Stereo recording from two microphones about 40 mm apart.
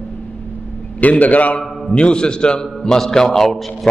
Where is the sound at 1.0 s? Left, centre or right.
Left.